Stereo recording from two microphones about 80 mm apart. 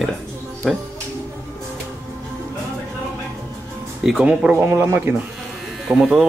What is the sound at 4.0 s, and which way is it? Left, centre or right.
Speech, centre.